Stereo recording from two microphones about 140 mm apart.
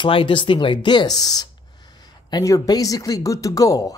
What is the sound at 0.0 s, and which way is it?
Speech, 40° left (ahead or behind).